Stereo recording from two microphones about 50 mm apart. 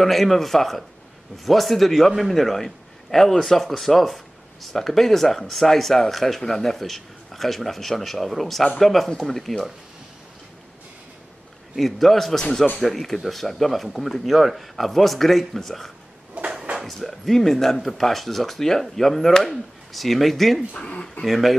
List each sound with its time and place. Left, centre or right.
0.0 s a man's voice: centre
11.7 s a man's voice: centre
20.8 s speech: centre
21.3 s a man's voice: centre